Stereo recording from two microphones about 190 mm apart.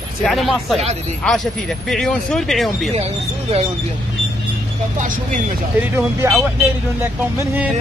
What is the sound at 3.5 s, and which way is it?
Speech, 30° right (ahead or behind).